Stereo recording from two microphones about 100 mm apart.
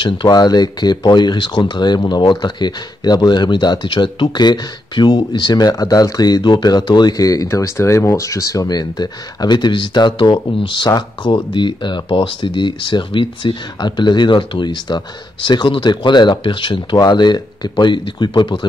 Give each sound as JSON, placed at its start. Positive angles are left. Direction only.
{"t": 0.0, "sound": "speech", "side_deg": 45}